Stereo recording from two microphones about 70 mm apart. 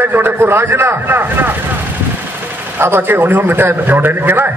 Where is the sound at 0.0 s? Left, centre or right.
Right.